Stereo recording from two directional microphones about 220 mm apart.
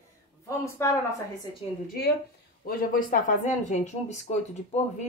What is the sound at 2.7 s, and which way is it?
Speech, 40° left (ahead or behind).